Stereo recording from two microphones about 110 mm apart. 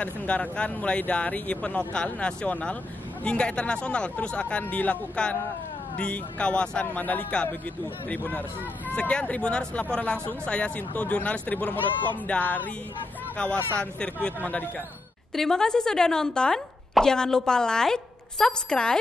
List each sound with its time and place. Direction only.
0.0 s speech: 10° left (ahead or behind)
13.7 s speech: 10° left (ahead or behind)